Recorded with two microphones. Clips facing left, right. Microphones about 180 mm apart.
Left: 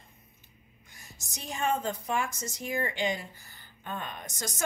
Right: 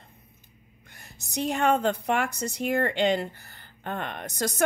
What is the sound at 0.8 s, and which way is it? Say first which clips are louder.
A woman's voice: right 3 dB; 60° right (ahead or behind).